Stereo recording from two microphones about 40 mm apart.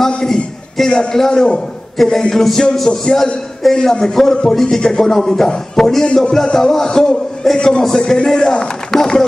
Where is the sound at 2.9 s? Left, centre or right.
Centre.